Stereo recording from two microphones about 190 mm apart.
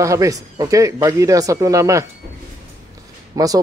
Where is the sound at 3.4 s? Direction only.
20° right (ahead or behind).